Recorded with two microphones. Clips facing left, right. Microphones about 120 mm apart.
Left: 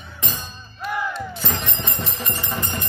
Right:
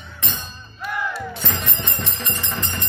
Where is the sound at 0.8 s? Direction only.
Centre (ahead or behind).